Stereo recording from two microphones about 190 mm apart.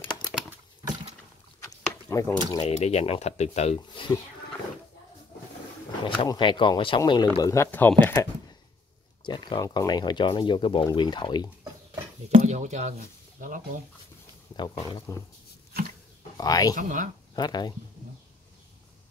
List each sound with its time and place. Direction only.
1.7 s drip: 15° left (ahead or behind)
2.6 s speech: 35° left (ahead or behind)
6.0 s speech: 25° left (ahead or behind)
9.2 s speech: 25° left (ahead or behind)
12.3 s speech: 40° right (ahead or behind)
14.6 s speech: 25° left (ahead or behind)
16.3 s speech: 20° left (ahead or behind)
16.7 s speech: 40° right (ahead or behind)
17.4 s speech: 20° left (ahead or behind)